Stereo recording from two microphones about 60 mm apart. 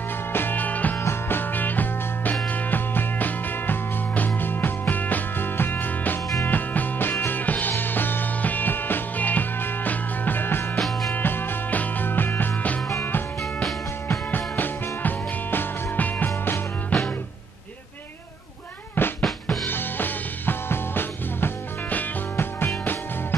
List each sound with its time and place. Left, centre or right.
0.3 s music: left
10.8 s music: centre
11.1 s music: left
13.4 s music: centre
14.3 s music: left
19.0 s drum kit: left
19.7 s music: left